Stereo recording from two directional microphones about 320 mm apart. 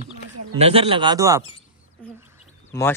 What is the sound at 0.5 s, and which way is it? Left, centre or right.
Speech, centre.